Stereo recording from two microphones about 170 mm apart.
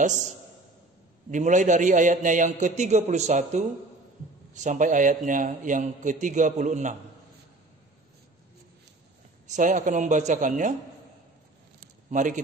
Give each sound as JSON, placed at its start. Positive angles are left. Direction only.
{"t": 1.3, "sound": "a man's voice", "side_deg": -45}
{"t": 9.5, "sound": "a man's voice", "side_deg": -50}
{"t": 12.1, "sound": "a man's voice", "side_deg": -50}